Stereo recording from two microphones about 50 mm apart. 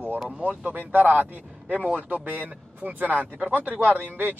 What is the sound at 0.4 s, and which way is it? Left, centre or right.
Speech, right.